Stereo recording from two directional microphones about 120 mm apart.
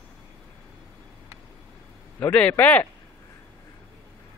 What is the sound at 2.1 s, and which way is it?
Speech, 15° left (ahead or behind).